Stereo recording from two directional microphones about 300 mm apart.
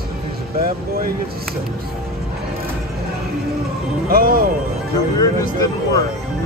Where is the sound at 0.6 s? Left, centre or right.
Right.